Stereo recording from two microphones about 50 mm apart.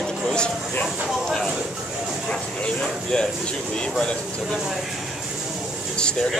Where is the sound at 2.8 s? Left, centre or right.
Centre.